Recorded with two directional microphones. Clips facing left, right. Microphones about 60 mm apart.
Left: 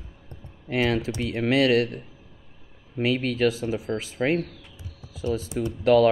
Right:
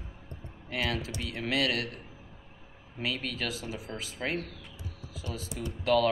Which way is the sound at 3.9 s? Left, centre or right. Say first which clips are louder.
Left 11 dB; left.